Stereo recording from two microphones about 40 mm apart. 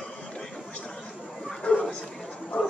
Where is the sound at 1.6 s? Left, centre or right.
Left.